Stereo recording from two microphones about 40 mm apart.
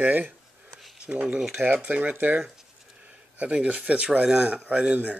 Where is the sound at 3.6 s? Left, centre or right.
Right.